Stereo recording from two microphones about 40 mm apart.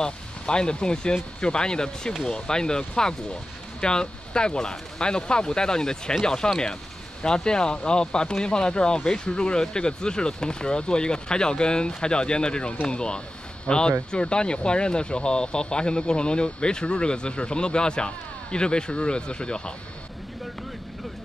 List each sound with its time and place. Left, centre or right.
0.0 s speech: left
3.8 s speech: left